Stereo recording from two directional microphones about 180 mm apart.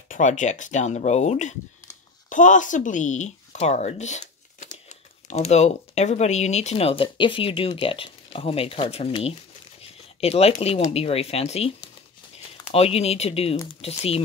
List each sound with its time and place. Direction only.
0.1 s speech: 45° left (ahead or behind)
12.7 s speech: 35° left (ahead or behind)